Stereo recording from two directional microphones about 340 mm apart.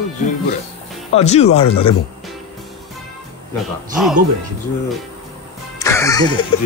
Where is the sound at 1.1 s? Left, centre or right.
Centre.